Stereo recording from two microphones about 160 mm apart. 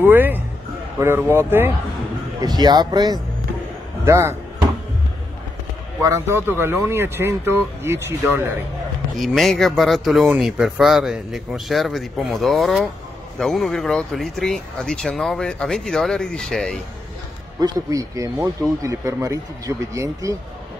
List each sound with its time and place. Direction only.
0.0 s speech: 10° right (ahead or behind)
2.4 s speech: 25° right (ahead or behind)
6.0 s speech: 15° right (ahead or behind)
9.2 s speech: centre (ahead or behind)
17.6 s speech: 25° right (ahead or behind)